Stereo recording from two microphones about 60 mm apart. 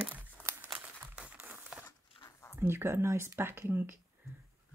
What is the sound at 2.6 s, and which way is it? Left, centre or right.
Speech, right.